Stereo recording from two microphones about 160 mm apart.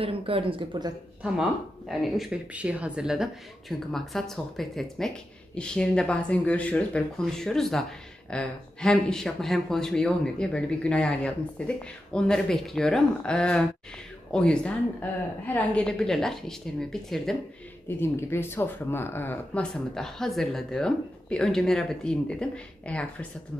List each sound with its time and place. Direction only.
0.0 s speech: 35° right (ahead or behind)
1.2 s speech: 5° right (ahead or behind)
17.8 s speech: 15° left (ahead or behind)